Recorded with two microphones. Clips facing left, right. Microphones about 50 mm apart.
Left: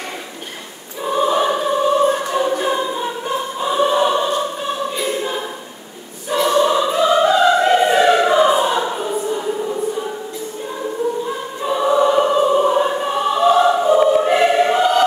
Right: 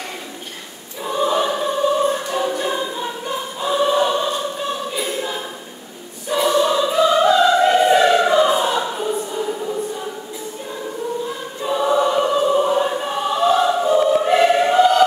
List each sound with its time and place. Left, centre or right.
1.0 s choir: centre
6.6 s music: centre
8.8 s choir: centre
11.2 s choir: centre